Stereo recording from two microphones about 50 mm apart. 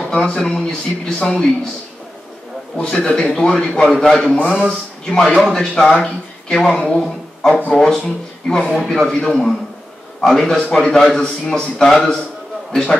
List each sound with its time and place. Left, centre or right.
0.2 s a man's voice: centre
2.8 s a man's voice: centre
7.0 s a sound: centre
7.7 s a man's voice: centre